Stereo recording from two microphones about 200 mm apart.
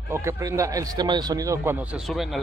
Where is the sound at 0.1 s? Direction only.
15° right (ahead or behind).